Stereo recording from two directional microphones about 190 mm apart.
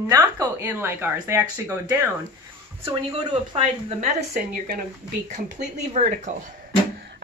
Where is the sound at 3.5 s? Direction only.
35° right (ahead or behind).